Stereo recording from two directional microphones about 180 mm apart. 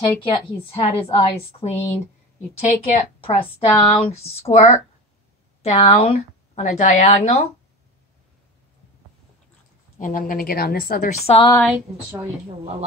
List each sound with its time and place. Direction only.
0.2 s a woman's voice: 30° left (ahead or behind)
9.9 s a woman's voice: 50° left (ahead or behind)
11.3 s a woman's voice: 35° left (ahead or behind)